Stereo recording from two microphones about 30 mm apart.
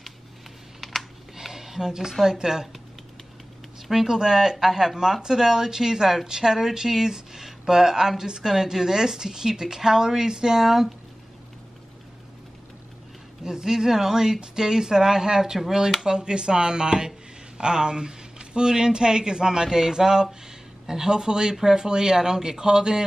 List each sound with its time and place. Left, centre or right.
1.3 s a sound: centre
1.9 s speech: right
3.9 s speech: centre
4.9 s speech: right
10.6 s speech: centre
13.4 s speech: centre